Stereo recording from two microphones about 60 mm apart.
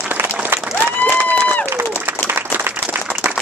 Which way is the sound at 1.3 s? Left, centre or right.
Left.